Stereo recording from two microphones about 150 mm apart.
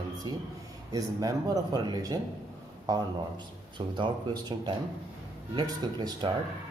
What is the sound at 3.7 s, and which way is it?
A man's voice, 30° right (ahead or behind).